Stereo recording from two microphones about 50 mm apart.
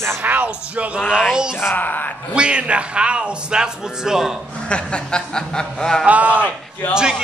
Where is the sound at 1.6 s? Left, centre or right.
Left.